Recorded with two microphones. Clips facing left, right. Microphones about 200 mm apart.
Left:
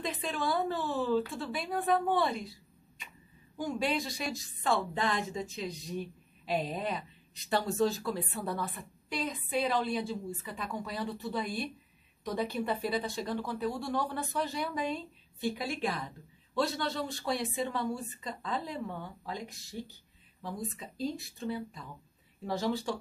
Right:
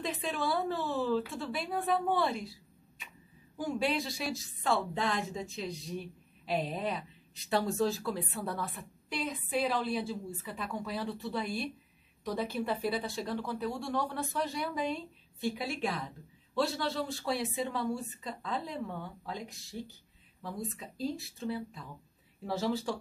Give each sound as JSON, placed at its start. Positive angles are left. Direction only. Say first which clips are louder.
{"t": 0.0, "sound": "a woman's voice", "louder": "even", "side_deg": 0}
{"t": 3.5, "sound": "a woman's voice", "louder": "even", "side_deg": 0}